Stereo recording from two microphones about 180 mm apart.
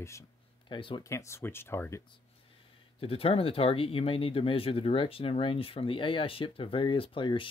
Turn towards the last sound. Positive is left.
turn(degrees=30)  # may be behind; listen again after turning